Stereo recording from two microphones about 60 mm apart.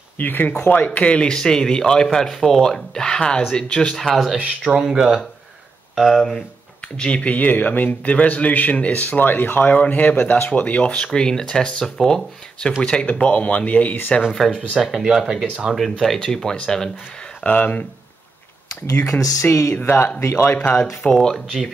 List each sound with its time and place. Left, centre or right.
0.2 s speech: left; by 3.9 s centre
3.9 s speech: centre
4.4 s speech: centre
7.0 s a man's voice: centre
14.5 s speech: centre
15.7 s speech: centre
17.4 s a man's voice: left
19.4 s speech: left
19.7 s speech: left
20.2 s speech: left
20.4 s a man's voice: left
21.0 s speech: centre